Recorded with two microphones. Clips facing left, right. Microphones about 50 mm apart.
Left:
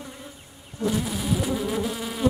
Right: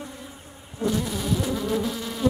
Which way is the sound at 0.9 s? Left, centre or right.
Centre.